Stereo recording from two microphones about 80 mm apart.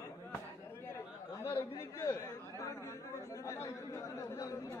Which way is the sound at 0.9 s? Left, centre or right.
Left.